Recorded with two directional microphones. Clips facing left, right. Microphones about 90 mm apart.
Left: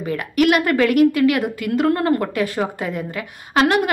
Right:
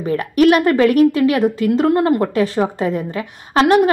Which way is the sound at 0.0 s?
30° right (ahead or behind).